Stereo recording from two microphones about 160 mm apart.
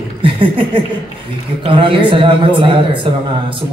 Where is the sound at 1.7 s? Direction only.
30° right (ahead or behind).